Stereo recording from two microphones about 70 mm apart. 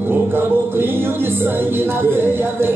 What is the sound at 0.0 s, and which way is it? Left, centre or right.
Music, right.